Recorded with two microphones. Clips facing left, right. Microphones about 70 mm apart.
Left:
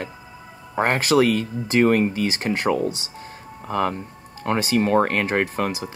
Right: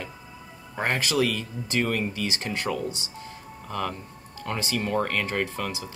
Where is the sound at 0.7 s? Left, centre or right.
Left.